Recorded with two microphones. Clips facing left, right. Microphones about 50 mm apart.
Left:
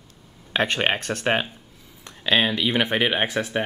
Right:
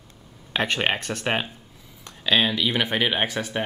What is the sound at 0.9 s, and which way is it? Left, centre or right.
Speech, left.